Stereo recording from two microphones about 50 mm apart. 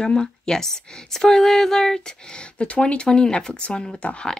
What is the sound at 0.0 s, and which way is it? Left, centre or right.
Speech, centre.